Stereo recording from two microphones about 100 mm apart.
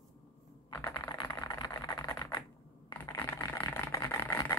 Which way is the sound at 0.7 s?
30° left (ahead or behind).